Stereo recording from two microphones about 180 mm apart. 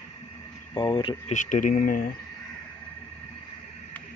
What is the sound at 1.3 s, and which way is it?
Speech, 45° left (ahead or behind).